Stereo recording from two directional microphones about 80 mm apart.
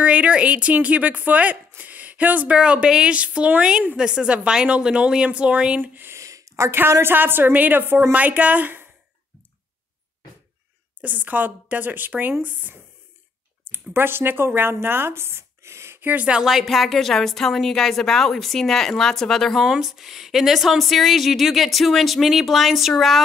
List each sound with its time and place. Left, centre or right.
0.0 s speech: centre
5.8 s a sound: right
6.8 s a woman's voice: right
11.0 s a woman's voice: right
16.3 s a woman's voice: centre
19.6 s a woman's voice: centre